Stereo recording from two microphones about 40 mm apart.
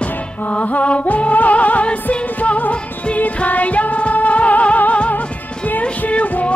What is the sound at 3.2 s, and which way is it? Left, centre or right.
Music, left.